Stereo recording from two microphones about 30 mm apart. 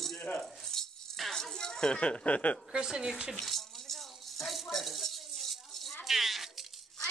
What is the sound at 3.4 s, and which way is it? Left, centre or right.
Rattle, centre.